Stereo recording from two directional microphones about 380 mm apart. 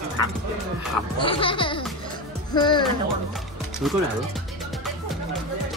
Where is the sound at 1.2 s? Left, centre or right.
Centre.